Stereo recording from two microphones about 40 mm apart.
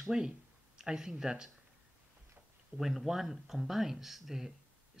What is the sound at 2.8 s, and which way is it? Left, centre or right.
Speech, centre.